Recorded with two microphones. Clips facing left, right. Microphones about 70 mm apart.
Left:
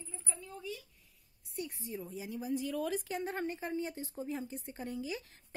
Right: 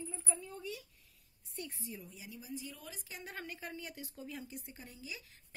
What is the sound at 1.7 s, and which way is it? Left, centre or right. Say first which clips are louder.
Speech: left 7 dB; left.